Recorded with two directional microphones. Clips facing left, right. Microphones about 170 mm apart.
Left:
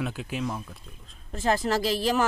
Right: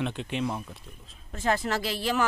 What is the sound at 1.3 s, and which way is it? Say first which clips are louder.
Speech: left 2 dB; 35° left (ahead or behind).